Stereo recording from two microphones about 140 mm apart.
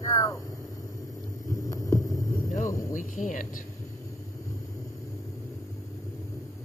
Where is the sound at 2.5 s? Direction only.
70° left (ahead or behind).